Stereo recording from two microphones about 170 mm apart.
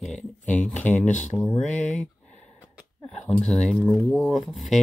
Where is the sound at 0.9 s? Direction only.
45° left (ahead or behind).